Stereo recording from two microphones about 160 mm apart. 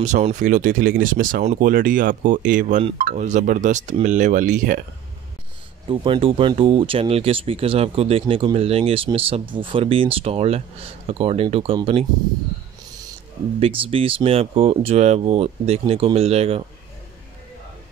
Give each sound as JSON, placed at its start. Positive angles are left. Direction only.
{"t": 0.0, "sound": "speech", "side_deg": -50}
{"t": 5.9, "sound": "speech", "side_deg": -35}
{"t": 13.6, "sound": "speech", "side_deg": -35}